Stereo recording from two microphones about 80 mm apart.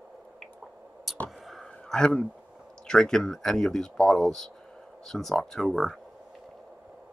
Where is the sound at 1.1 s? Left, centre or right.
Centre.